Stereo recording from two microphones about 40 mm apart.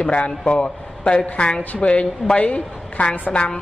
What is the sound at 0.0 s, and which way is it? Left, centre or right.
A man's voice, left.